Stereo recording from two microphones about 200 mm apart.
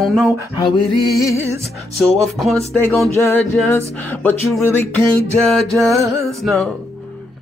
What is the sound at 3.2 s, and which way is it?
Music, 10° left (ahead or behind).